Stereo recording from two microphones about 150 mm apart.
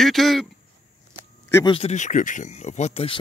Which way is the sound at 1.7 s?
45° left (ahead or behind).